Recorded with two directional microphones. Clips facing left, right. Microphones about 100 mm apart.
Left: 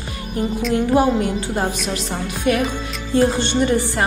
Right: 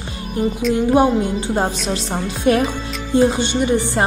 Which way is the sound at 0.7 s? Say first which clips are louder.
Right 1 dB; 20° right (ahead or behind).